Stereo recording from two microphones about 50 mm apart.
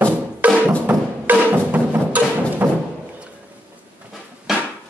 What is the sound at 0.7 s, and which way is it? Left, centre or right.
Music, right.